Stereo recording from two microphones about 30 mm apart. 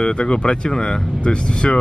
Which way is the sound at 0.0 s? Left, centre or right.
Left.